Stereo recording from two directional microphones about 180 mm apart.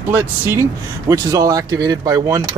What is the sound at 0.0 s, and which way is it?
Speech, 10° right (ahead or behind).